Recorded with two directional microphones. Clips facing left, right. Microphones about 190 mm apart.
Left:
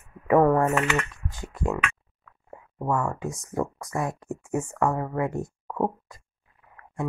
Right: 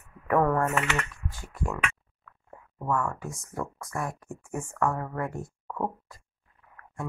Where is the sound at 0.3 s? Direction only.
20° left (ahead or behind).